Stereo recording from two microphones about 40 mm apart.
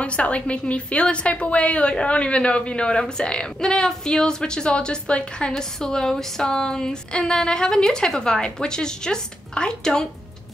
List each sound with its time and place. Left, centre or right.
0.0 s a woman's voice: left
5.5 s a woman's voice: centre